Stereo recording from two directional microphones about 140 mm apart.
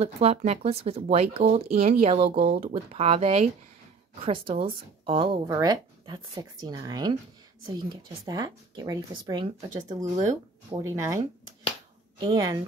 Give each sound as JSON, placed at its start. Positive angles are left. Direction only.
{"t": 0.0, "sound": "a woman's voice", "side_deg": -50}
{"t": 5.5, "sound": "speech", "side_deg": -30}